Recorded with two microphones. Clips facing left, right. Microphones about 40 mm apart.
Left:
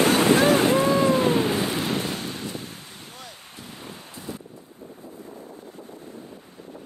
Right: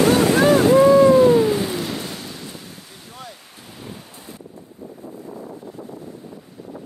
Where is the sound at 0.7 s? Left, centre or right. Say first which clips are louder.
Right 8 dB; left.